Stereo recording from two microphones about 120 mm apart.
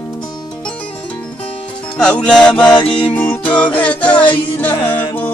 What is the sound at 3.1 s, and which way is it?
Music, 10° left (ahead or behind).